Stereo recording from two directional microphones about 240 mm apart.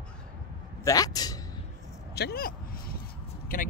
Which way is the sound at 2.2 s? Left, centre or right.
Left.